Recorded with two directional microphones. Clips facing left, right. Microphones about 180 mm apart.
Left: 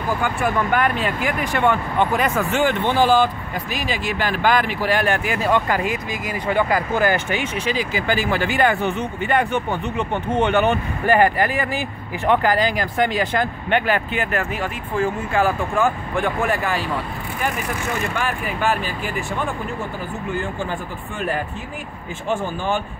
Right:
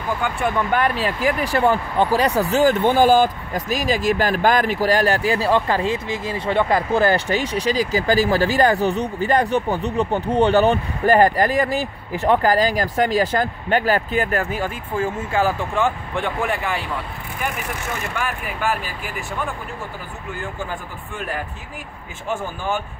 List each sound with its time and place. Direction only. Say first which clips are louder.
0.7 s speech: even; 35° right (ahead or behind)